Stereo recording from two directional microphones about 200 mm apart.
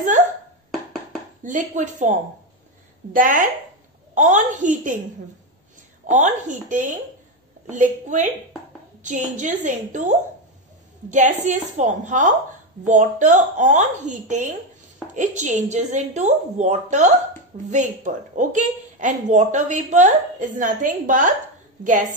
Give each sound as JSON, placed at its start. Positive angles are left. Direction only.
{"t": 1.4, "sound": "a woman's voice", "side_deg": -40}
{"t": 6.0, "sound": "a woman's voice", "side_deg": -35}